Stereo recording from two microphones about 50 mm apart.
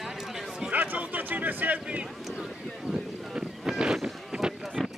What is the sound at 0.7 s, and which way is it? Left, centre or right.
Speech, right.